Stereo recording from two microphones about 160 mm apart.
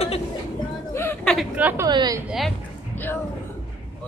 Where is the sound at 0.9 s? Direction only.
15° left (ahead or behind).